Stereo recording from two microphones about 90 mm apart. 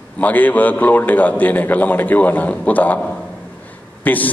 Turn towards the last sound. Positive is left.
turn(degrees=20)  # may be behind; listen again after turning